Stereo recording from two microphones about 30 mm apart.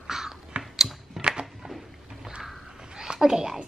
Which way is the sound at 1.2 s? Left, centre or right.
Centre.